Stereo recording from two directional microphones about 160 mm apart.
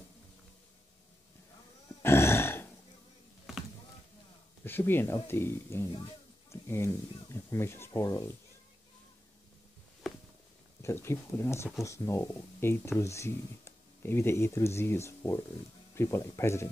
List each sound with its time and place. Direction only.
2.0 s a sound: 15° left (ahead or behind)
4.6 s speech: 15° left (ahead or behind)
10.8 s speech: 15° left (ahead or behind)